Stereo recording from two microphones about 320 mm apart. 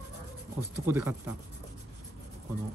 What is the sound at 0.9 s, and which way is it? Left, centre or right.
Speech, centre.